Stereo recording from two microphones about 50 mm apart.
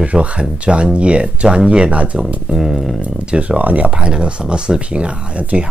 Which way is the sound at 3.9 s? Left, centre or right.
Right.